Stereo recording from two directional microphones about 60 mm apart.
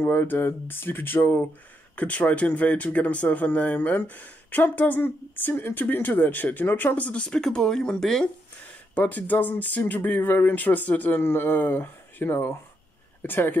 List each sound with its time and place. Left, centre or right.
0.0 s speech: left
2.0 s speech: left
8.9 s speech: left